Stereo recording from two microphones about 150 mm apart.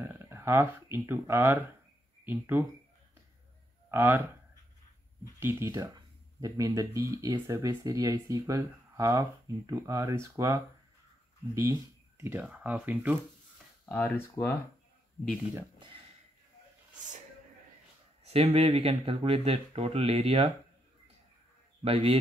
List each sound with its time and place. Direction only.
0.0 s speech: 15° right (ahead or behind)
3.9 s speech: 15° right (ahead or behind)
5.2 s speech: 15° right (ahead or behind)
13.8 s speech: 10° left (ahead or behind)
18.2 s speech: 40° right (ahead or behind)
21.8 s a man's voice: 40° right (ahead or behind)